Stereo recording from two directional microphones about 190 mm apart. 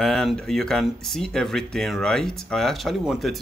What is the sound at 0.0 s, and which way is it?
Speech, centre (ahead or behind).